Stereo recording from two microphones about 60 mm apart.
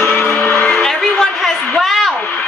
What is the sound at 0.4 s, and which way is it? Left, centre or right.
Music, left.